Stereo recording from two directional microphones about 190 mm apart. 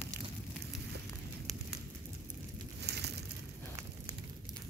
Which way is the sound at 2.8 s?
60° right (ahead or behind).